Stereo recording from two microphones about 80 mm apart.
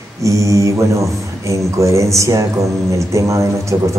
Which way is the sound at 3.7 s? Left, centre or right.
Right.